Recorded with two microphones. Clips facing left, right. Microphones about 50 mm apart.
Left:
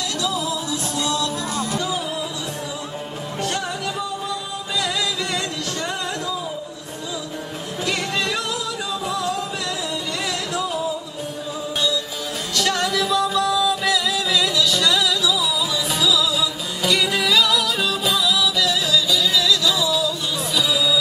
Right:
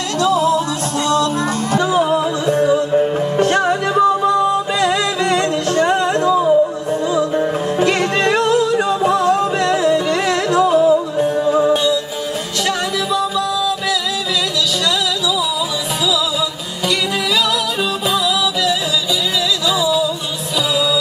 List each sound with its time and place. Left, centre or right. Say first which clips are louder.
0.2 s music: right 12 dB; right
1.7 s music: right 10 dB; right
7.8 s music: right 7 dB; right
11.7 s music: right 8 dB; right
12.6 s music: right 2 dB; centre
16.8 s music: right 1 dB; centre
18.1 s music: right 4 dB; centre
19.8 s music: right 5 dB; right